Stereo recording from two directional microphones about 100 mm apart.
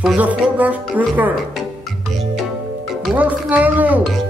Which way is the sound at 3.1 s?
15° right (ahead or behind).